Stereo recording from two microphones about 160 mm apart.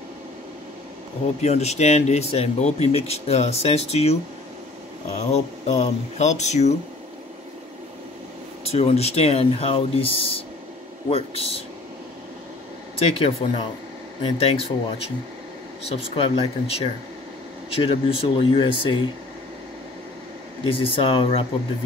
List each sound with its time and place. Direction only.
1.4 s speech: 45° left (ahead or behind)
5.3 s speech: 45° left (ahead or behind)
8.6 s speech: 40° left (ahead or behind)
13.0 s speech: 35° left (ahead or behind)
15.9 s speech: 35° left (ahead or behind)
20.6 s speech: 35° left (ahead or behind)